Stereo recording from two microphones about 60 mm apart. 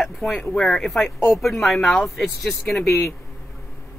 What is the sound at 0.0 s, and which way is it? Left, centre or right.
Speech, centre.